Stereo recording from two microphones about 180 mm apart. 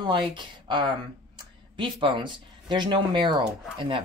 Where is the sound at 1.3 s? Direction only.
25° right (ahead or behind).